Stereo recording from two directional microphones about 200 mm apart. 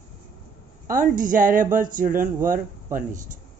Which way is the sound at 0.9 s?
40° right (ahead or behind).